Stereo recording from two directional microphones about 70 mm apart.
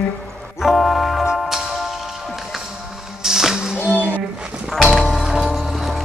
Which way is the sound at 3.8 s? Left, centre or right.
Left.